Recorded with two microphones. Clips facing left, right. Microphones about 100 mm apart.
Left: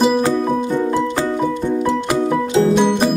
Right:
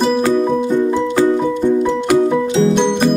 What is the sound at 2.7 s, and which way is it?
Music, 5° left (ahead or behind).